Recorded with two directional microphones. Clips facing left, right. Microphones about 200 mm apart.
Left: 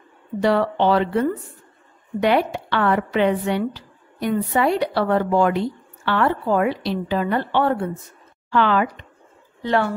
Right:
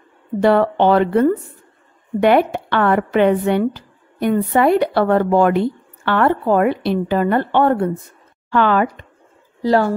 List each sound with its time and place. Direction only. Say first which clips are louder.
0.4 s speech: right 5 dB; 55° right (ahead or behind)
9.6 s a woman's voice: right 5 dB; 35° right (ahead or behind)